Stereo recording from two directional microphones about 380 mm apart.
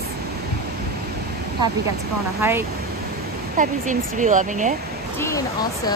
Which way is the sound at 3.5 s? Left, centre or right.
Centre.